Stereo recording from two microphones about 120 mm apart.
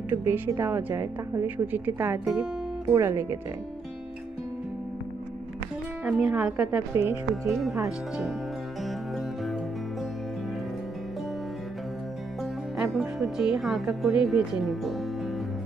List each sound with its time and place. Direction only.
0.1 s a woman's voice: 25° right (ahead or behind)
6.0 s a woman's voice: 5° right (ahead or behind)
7.4 s speech: centre (ahead or behind)
8.8 s music: centre (ahead or behind)
12.7 s speech: centre (ahead or behind)